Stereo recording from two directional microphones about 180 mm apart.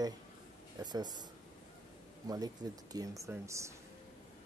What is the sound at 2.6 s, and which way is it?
Speech, 20° right (ahead or behind).